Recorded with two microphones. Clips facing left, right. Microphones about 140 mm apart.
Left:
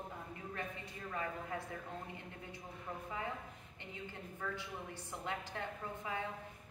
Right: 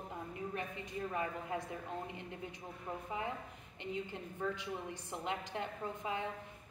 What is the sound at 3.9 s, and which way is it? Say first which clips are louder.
A woman's voice: right 5 dB; 20° right (ahead or behind).